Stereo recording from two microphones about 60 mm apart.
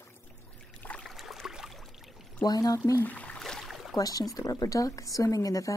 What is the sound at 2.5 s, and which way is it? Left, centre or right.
Speech, left.